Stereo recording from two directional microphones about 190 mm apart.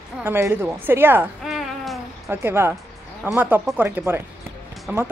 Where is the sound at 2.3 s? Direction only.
10° right (ahead or behind).